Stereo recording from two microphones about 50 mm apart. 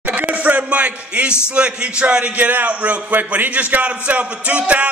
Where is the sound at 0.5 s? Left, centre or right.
Right.